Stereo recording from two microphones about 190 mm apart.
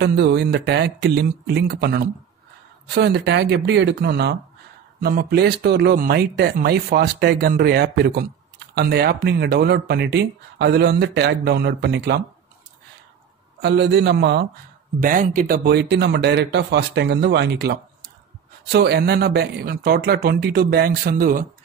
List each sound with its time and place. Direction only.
0.0 s speech: 60° right (ahead or behind)
13.6 s speech: 65° right (ahead or behind)
15.0 s speech: 45° right (ahead or behind)